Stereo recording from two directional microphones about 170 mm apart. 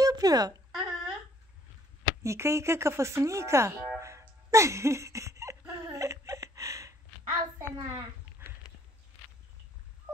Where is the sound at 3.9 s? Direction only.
15° right (ahead or behind).